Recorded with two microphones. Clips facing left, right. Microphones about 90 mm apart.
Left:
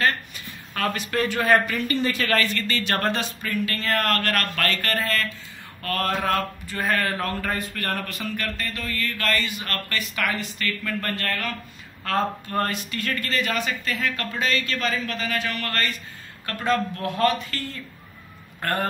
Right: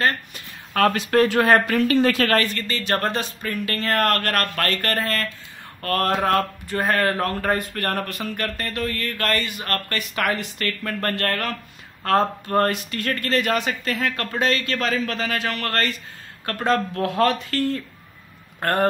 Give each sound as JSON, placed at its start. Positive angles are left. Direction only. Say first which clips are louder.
{"t": 0.7, "sound": "a man's voice", "louder": "right 7 dB", "side_deg": -80}
{"t": 2.2, "sound": "a man's voice", "louder": "right 2 dB", "side_deg": -40}
{"t": 18.6, "sound": "speech", "louder": "right 5 dB", "side_deg": -50}